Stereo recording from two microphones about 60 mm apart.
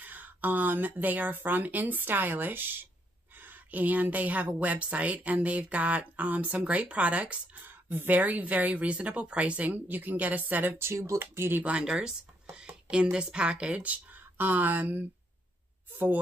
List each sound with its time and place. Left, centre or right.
0.0 s speech: right
7.6 s speech: right
10.8 s speech: right
11.1 s speech: right
11.8 s speech: centre; by 16.2 s right